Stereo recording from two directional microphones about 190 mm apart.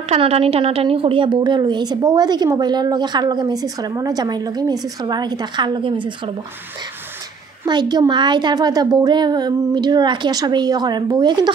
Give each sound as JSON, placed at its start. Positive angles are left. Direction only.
{"t": 0.1, "sound": "a woman's voice", "side_deg": -30}
{"t": 7.6, "sound": "a woman's voice", "side_deg": -20}